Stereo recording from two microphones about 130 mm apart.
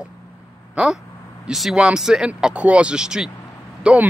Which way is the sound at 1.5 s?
5° right (ahead or behind).